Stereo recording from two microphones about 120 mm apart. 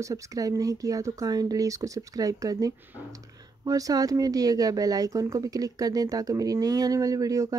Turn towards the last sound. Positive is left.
turn(degrees=-30)  # may be behind; listen again after turning